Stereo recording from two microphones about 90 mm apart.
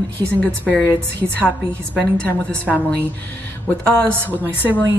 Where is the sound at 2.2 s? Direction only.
20° left (ahead or behind).